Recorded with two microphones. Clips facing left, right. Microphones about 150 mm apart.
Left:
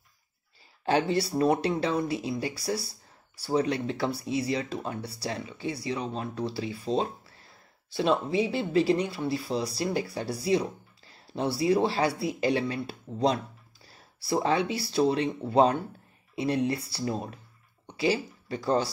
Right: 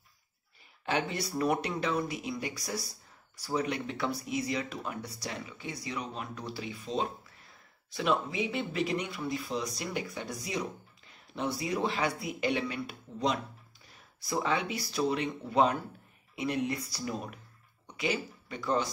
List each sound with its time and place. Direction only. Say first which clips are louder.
0.8 s speech: left 7 dB; 30° left (ahead or behind)